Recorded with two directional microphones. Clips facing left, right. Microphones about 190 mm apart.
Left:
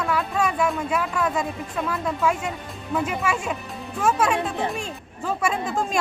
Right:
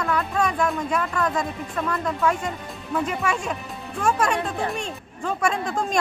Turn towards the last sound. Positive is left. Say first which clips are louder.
# even
turn(degrees=5)  # may be behind; listen again after turning